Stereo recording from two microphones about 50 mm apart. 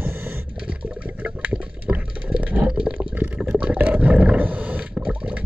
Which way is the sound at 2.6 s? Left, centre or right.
Centre.